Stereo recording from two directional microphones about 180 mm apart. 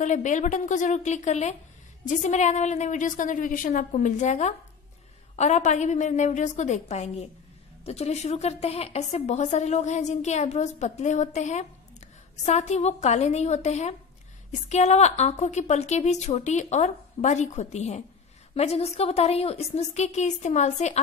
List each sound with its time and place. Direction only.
0.0 s a woman's voice: 45° left (ahead or behind)